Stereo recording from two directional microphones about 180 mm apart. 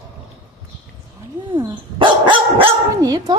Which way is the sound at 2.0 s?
25° right (ahead or behind).